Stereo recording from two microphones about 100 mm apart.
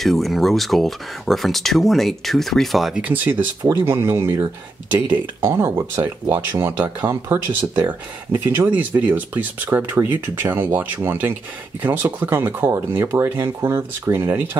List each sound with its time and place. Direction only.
0.0 s speech: centre (ahead or behind)
3.0 s speech: 15° right (ahead or behind)